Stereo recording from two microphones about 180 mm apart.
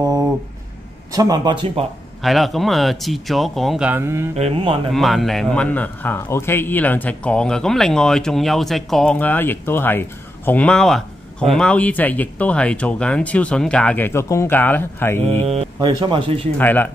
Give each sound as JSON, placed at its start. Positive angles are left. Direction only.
{"t": 1.1, "sound": "speech", "side_deg": -20}
{"t": 2.2, "sound": "a man's voice", "side_deg": 0}
{"t": 4.4, "sound": "speech", "side_deg": -35}
{"t": 4.9, "sound": "a man's voice", "side_deg": 0}
{"t": 15.4, "sound": "speech", "side_deg": -35}
{"t": 16.5, "sound": "speech", "side_deg": 10}